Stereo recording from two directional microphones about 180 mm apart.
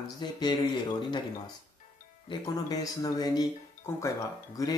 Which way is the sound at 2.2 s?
20° left (ahead or behind).